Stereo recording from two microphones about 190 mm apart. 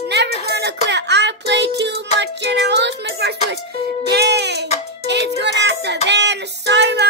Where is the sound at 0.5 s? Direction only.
65° right (ahead or behind).